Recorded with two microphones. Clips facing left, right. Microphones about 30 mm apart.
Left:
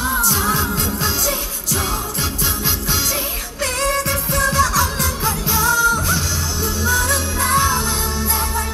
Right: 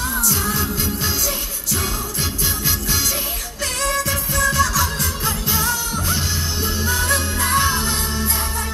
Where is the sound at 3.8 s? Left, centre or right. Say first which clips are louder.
Left 1 dB; centre.